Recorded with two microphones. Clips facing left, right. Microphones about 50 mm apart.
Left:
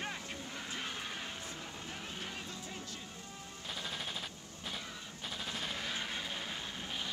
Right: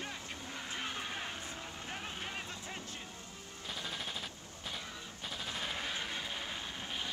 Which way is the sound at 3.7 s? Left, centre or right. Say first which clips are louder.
Even; centre.